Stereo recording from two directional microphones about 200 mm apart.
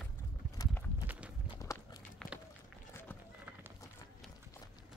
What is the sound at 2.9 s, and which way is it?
Run, 10° left (ahead or behind).